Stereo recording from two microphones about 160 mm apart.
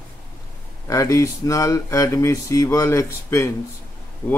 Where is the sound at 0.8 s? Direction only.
20° left (ahead or behind).